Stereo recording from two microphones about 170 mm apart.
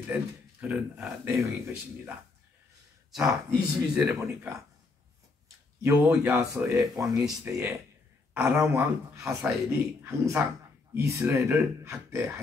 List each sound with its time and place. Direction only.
0.0 s speech: 10° right (ahead or behind)
3.1 s speech: centre (ahead or behind)
5.8 s speech: 15° right (ahead or behind)